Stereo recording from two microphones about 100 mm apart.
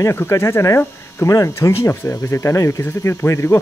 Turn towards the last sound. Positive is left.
turn(degrees=25)  # may be behind; listen again after turning